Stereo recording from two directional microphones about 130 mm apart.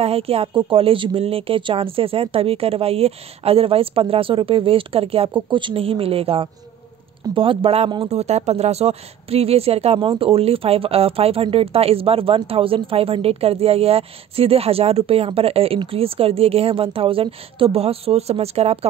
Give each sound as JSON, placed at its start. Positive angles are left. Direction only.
{"t": 0.0, "sound": "a woman's voice", "side_deg": -50}